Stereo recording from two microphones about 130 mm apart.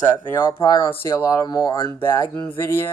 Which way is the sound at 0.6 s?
30° left (ahead or behind).